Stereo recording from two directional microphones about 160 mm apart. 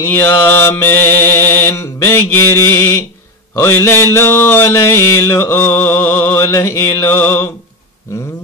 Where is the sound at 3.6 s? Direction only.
15° left (ahead or behind).